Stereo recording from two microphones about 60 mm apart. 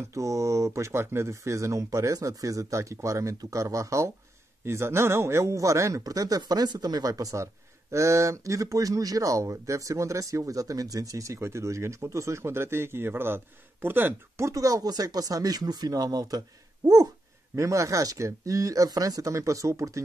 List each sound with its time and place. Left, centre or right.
0.1 s speech: right
4.6 s speech: right
7.9 s speech: right
11.3 s speech: right
14.4 s speech: right
17.6 s speech: right